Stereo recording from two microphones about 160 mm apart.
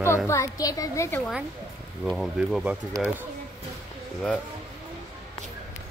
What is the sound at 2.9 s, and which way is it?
Speech, 15° right (ahead or behind).